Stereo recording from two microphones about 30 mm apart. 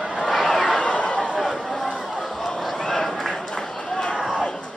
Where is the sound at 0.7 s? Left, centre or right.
Left.